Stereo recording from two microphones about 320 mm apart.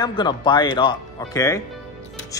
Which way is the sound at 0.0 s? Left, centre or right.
Centre.